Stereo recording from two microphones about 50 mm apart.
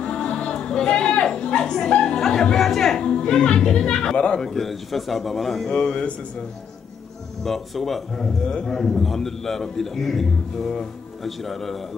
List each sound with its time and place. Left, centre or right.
0.0 s music: centre
0.8 s a sound: left
1.3 s a woman's voice: centre
4.5 s a man's voice: centre
5.7 s speech: left
7.4 s a man's voice: centre
8.2 s a man's voice: centre